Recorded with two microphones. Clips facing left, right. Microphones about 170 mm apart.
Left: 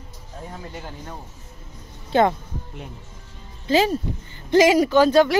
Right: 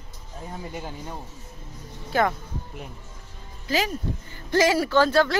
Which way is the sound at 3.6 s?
25° left (ahead or behind).